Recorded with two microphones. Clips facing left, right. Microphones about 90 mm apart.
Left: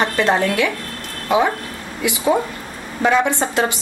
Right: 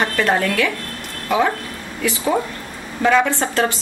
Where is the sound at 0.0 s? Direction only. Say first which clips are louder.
Left 1 dB; 20° left (ahead or behind).